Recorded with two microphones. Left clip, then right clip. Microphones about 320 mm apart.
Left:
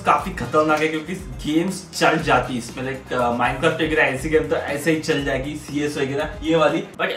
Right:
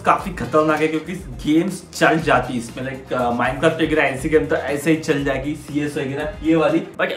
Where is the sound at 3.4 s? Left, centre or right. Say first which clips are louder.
Right 2 dB; centre.